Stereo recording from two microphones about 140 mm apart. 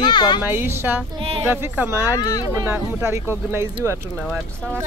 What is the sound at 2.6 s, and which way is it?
Speech, 20° right (ahead or behind).